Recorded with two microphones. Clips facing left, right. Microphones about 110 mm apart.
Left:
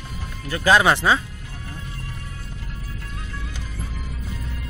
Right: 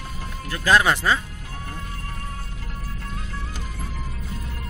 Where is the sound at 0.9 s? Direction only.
25° left (ahead or behind).